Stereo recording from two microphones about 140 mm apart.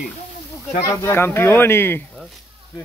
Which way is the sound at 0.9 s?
20° left (ahead or behind).